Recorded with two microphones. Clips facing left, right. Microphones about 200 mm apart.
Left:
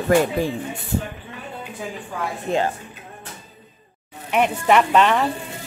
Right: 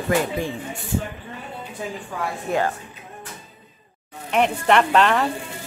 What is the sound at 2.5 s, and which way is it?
Speech, 25° left (ahead or behind).